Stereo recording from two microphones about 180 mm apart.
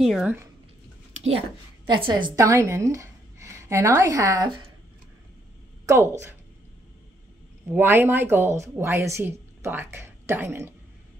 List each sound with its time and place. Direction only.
0.0 s speech: 5° right (ahead or behind)
1.1 s a sound: 35° right (ahead or behind)
1.9 s a woman's voice: 25° right (ahead or behind)
7.7 s a woman's voice: 10° right (ahead or behind)